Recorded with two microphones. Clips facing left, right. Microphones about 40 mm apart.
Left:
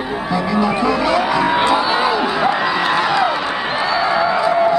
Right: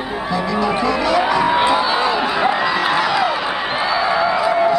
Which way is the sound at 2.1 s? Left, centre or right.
Centre.